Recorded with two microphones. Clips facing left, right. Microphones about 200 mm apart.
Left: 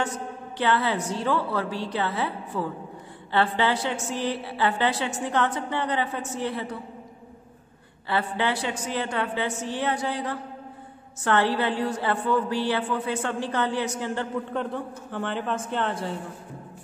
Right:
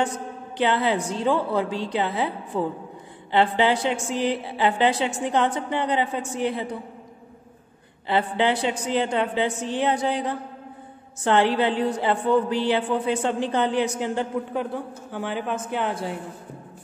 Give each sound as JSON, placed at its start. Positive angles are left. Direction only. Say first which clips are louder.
{"t": 0.6, "sound": "a woman's voice", "louder": "right 2 dB", "side_deg": -20}
{"t": 8.1, "sound": "a woman's voice", "louder": "right 4 dB", "side_deg": -20}